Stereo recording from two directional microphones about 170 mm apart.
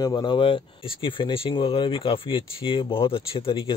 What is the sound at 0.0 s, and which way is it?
Speech, 25° left (ahead or behind).